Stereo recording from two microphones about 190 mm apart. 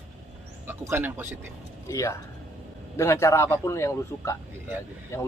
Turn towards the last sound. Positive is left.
turn(degrees=15)  # may be behind; listen again after turning